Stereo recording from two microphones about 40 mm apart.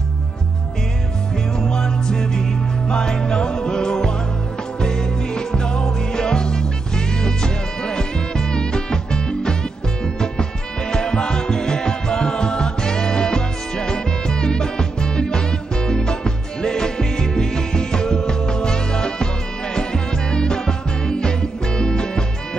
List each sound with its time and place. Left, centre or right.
1.7 s music: centre
10.9 s music: centre